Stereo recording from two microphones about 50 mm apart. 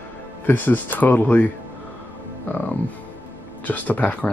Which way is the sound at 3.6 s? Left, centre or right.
Left.